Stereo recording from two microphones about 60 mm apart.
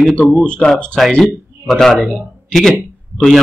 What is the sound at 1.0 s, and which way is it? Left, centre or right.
A man's voice, centre.